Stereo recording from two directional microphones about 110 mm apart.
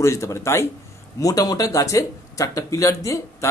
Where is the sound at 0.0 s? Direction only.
25° left (ahead or behind).